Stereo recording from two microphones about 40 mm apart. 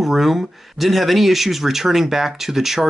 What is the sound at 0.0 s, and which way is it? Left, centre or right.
Speech, centre.